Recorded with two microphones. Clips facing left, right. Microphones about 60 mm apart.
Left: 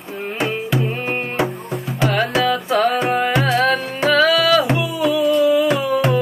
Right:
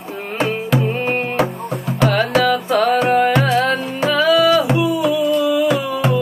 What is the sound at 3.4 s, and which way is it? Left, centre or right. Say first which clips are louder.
Music: even; left.